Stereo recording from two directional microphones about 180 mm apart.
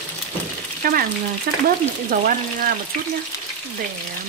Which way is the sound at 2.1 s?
50° right (ahead or behind).